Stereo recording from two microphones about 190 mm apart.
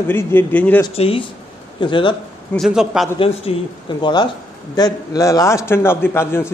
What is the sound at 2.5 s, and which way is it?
Music, centre (ahead or behind).